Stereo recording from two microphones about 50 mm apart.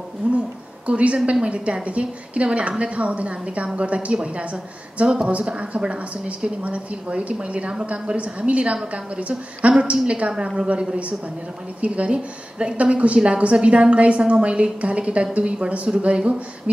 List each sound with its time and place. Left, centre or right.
0.2 s a woman's voice: right